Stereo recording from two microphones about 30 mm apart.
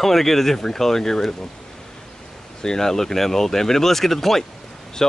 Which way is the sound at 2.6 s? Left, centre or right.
Left.